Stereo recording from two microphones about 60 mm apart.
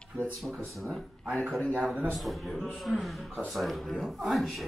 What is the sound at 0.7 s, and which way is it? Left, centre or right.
Speech, centre.